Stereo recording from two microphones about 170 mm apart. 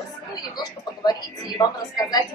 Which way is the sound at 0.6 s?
20° left (ahead or behind).